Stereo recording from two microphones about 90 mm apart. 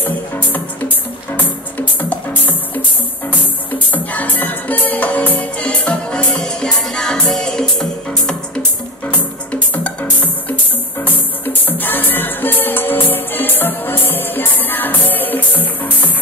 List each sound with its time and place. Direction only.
0.0 s music: 20° left (ahead or behind)
3.9 s music: 20° left (ahead or behind)